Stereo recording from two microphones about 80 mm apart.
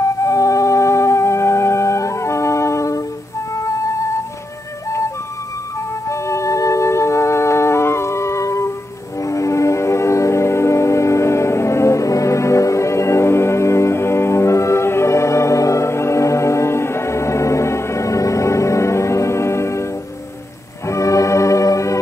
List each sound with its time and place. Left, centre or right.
0.0 s music: left
6.0 s music: left
20.9 s music: left